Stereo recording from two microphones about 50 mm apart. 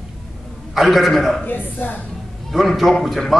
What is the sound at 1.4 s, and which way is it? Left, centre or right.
Speech, left.